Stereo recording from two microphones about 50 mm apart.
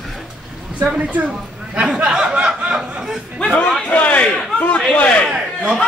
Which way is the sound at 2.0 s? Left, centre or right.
Centre.